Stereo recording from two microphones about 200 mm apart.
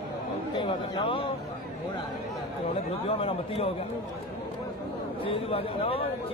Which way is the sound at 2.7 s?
30° left (ahead or behind).